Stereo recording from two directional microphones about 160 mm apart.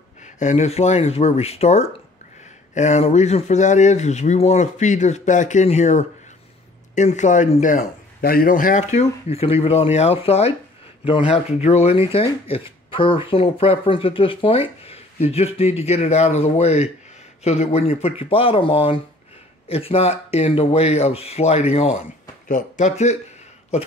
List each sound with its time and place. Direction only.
0.2 s a man's voice: 50° left (ahead or behind)